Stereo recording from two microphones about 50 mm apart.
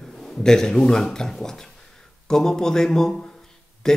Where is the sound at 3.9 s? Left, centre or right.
Centre.